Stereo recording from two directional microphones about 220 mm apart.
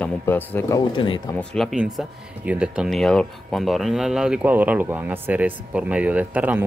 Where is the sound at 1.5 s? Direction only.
Centre (ahead or behind).